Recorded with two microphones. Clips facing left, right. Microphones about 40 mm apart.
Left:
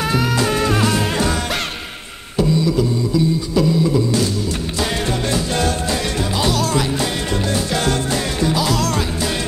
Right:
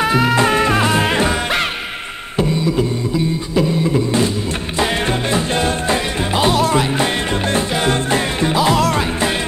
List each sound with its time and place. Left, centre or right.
0.0 s music: right
3.5 s beatboxing: right
4.7 s music: right